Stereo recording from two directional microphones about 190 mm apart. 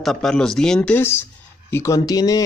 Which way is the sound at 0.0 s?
Centre (ahead or behind).